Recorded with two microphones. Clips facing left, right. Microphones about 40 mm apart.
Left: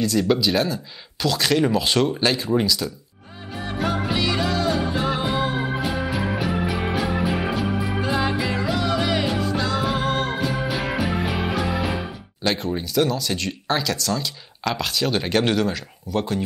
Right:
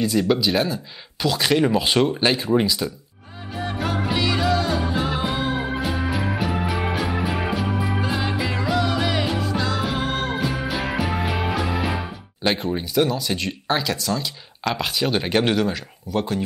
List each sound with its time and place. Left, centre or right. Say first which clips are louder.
0.0 s speech: even; centre
3.5 s music: left 1 dB; centre
12.4 s speech: right 1 dB; centre